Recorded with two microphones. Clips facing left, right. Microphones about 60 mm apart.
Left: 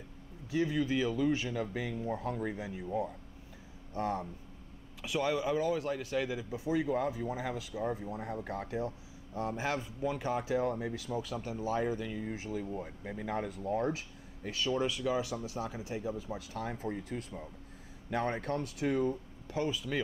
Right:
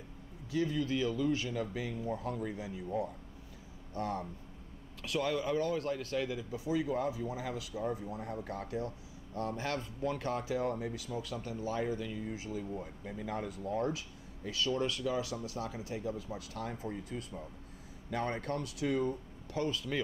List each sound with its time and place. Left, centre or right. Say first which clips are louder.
0.5 s speech: left 2 dB; left
1.5 s speech: left 1 dB; left
3.9 s speech: left 2 dB; left
5.0 s speech: left 2 dB; centre
6.5 s speech: left 2 dB; left
10.8 s speech: left 2 dB; left
14.5 s speech: left 1 dB; left
14.9 s speech: left 2 dB; centre
15.1 s speech: left 2 dB; left
16.7 s speech: left 2 dB; left
18.1 s speech: left 2 dB; left
18.6 s speech: left 1 dB; left
19.5 s speech: left 1 dB; centre